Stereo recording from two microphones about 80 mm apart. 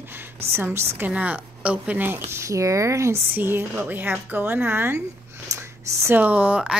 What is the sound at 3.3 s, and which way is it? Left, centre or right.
A woman's voice, right.